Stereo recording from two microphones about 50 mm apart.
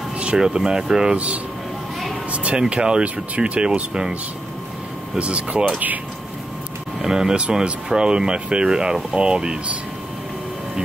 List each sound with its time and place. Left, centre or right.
0.2 s speech: centre
1.1 s speech: right
7.0 s speech: centre